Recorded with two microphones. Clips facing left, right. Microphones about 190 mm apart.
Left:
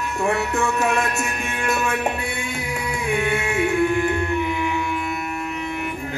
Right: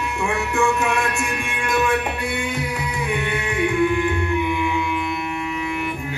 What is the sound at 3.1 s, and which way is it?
Music, 45° left (ahead or behind).